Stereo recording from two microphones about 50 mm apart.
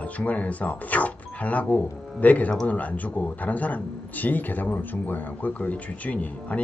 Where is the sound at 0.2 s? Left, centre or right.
Left.